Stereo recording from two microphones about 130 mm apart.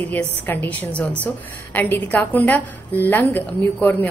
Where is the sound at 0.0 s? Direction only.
15° left (ahead or behind).